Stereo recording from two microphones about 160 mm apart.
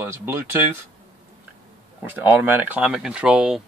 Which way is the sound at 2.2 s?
10° right (ahead or behind).